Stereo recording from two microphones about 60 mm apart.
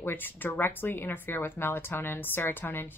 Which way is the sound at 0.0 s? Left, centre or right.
Left.